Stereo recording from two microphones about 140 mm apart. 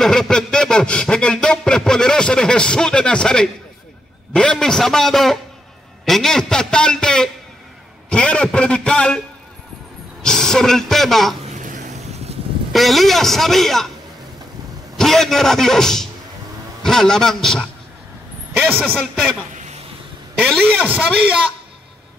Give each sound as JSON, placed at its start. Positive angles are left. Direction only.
{"t": 0.0, "sound": "a sound", "side_deg": 5}
{"t": 4.3, "sound": "a man's voice", "side_deg": 5}
{"t": 10.2, "sound": "a man's voice", "side_deg": 5}
{"t": 11.4, "sound": "a sound", "side_deg": -65}
{"t": 12.7, "sound": "a man's voice", "side_deg": 0}
{"t": 15.0, "sound": "a man's voice", "side_deg": 0}
{"t": 20.3, "sound": "a man's voice", "side_deg": 5}